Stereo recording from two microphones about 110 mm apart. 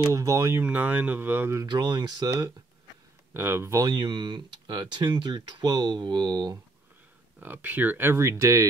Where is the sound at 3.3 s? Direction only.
20° right (ahead or behind).